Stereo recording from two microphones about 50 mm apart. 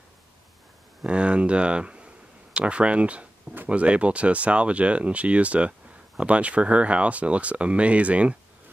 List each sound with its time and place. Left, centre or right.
1.0 s speech: right